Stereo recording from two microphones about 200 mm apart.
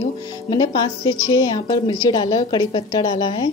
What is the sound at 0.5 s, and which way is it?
Speech, 20° left (ahead or behind).